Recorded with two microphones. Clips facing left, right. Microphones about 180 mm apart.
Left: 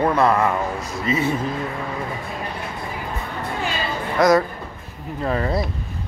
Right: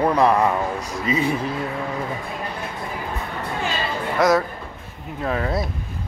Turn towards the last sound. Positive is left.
turn(degrees=0)  # may be behind; listen again after turning